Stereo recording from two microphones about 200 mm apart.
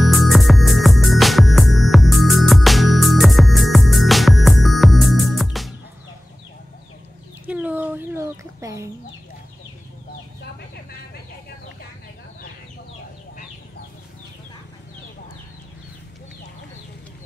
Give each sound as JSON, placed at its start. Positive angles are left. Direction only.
{"t": 0.1, "sound": "music", "side_deg": 0}
{"t": 7.4, "sound": "chicken", "side_deg": -10}